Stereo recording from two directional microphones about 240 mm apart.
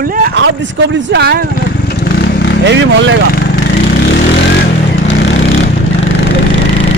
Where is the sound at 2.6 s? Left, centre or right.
Right.